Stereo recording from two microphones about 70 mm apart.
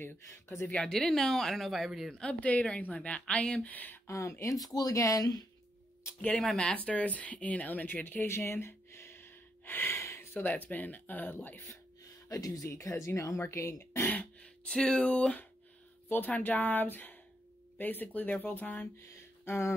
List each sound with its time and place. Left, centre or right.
0.0 s speech: left
0.7 s speech: centre
2.1 s speech: centre
4.1 s speech: left
4.7 s speech: left
6.3 s speech: centre
6.8 s speech: left
12.3 s speech: left
12.6 s speech: left
14.4 s speech: centre
16.1 s speech: left
18.9 s a sound: left